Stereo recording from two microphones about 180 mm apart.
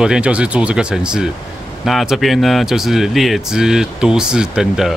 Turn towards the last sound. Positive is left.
turn(degrees=-5)  # may be behind; listen again after turning